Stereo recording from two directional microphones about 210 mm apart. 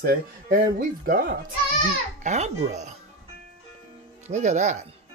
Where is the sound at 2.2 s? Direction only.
35° right (ahead or behind).